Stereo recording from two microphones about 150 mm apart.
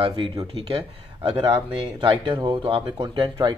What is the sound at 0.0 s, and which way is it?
Speech, 35° right (ahead or behind).